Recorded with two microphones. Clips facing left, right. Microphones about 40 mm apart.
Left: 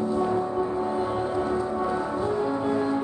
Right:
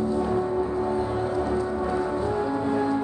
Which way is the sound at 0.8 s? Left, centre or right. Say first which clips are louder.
Right 1 dB; centre.